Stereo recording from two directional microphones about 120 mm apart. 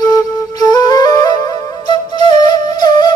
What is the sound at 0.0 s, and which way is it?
Flute, 30° left (ahead or behind).